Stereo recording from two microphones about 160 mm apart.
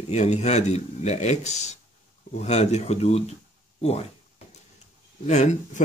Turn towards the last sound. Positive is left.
turn(degrees=50)  # may be behind; listen again after turning